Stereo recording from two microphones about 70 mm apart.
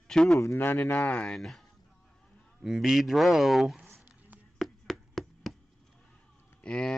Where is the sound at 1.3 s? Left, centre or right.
Centre.